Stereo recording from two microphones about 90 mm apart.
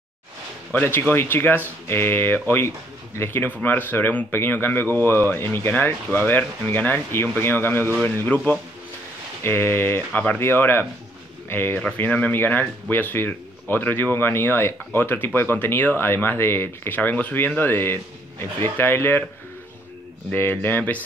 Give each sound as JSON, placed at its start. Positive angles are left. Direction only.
{"t": 0.7, "sound": "speech", "side_deg": 25}
{"t": 9.4, "sound": "speech", "side_deg": 25}
{"t": 20.2, "sound": "speech", "side_deg": 25}